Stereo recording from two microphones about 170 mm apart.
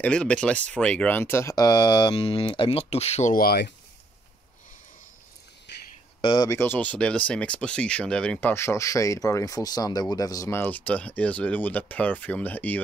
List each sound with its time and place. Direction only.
0.0 s speech: 5° left (ahead or behind); by 3.3 s 40° left (ahead or behind)
3.3 s speech: 70° left (ahead or behind)
5.7 s a sound: 90° left
6.2 s speech: 25° left (ahead or behind)
6.6 s speech: 10° left (ahead or behind)